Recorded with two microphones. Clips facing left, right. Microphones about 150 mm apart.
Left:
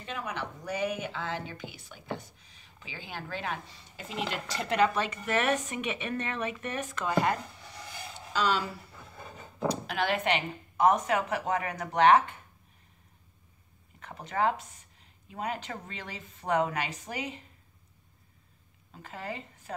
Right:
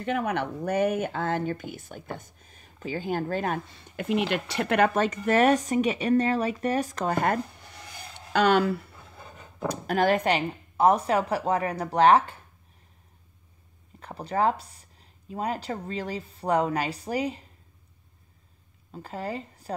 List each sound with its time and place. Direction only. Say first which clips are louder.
0.0 s speech: right 9 dB; 60° right (ahead or behind)
8.3 s speech: right 8 dB; 60° right (ahead or behind)
9.7 s speech: right 6 dB; 45° right (ahead or behind)
13.9 s speech: right 5 dB; 35° right (ahead or behind)
18.9 s speech: right 6 dB; 35° right (ahead or behind)